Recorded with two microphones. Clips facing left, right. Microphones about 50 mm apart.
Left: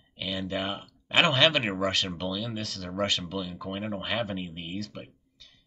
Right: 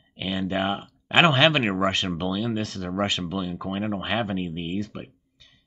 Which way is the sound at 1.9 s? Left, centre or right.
Centre.